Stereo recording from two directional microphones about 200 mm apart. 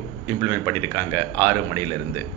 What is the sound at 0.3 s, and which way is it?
Speech, 25° right (ahead or behind).